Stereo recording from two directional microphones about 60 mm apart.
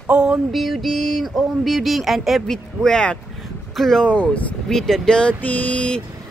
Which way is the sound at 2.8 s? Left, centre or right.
Centre.